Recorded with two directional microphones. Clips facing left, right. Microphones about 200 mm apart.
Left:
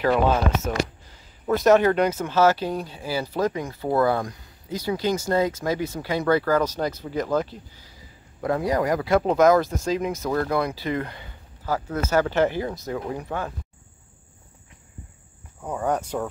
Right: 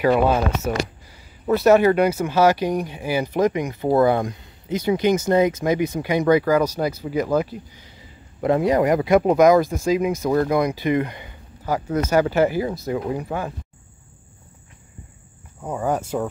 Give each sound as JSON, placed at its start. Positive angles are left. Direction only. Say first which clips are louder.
{"t": 0.7, "sound": "speech", "louder": "right 2 dB", "side_deg": -10}
{"t": 15.6, "sound": "speech", "louder": "right 2 dB", "side_deg": -5}